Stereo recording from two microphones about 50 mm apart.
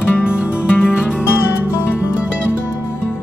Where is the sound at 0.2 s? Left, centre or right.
Centre.